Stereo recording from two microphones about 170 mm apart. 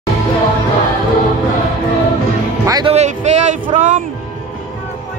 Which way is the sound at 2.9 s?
40° right (ahead or behind).